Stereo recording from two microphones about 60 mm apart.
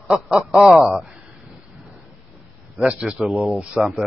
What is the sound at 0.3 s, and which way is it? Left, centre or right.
Speech, centre.